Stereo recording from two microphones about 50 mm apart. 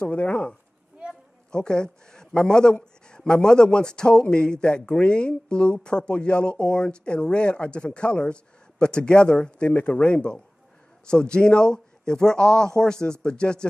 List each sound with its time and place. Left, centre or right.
0.0 s a man's voice: left